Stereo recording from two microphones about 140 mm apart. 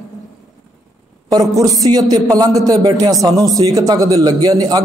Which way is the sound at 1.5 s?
25° right (ahead or behind).